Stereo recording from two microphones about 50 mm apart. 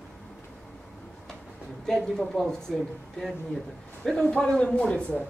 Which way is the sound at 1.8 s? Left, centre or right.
Centre.